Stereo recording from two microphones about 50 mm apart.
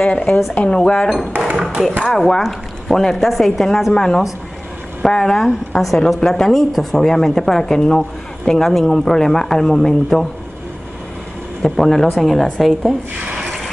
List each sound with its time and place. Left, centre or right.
0.0 s a woman's voice: centre
2.1 s a woman's voice: centre
11.6 s speech: centre